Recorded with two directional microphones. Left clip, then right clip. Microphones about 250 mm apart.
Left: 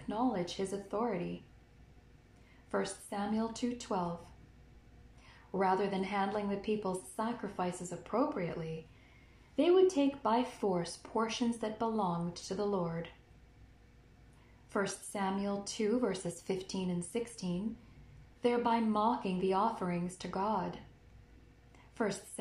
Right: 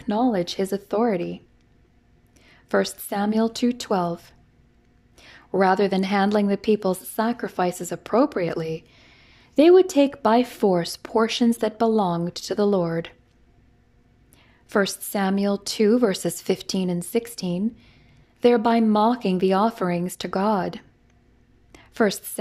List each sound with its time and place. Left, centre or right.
0.1 s speech: right
2.7 s speech: right
5.2 s speech: right
14.7 s a woman's voice: right